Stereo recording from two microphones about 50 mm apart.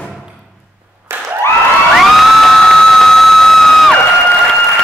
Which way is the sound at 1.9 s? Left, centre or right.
Centre.